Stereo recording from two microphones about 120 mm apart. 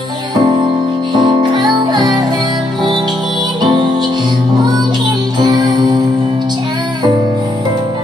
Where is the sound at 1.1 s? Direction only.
40° right (ahead or behind).